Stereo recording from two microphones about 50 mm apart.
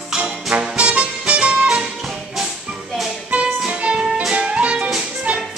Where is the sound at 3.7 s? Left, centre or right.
Right.